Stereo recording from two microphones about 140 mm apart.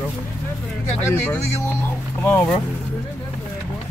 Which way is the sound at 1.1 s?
15° left (ahead or behind).